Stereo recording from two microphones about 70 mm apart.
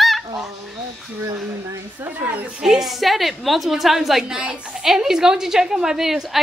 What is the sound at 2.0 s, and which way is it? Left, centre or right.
Speech, right.